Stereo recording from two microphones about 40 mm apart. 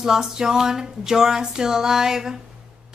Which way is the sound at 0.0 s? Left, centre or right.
Centre.